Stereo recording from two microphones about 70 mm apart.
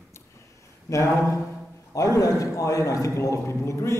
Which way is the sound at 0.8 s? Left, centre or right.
Left.